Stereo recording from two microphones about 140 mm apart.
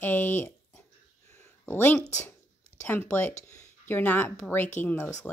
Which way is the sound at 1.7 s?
15° left (ahead or behind).